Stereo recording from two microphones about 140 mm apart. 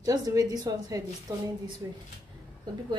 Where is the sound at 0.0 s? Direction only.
25° right (ahead or behind).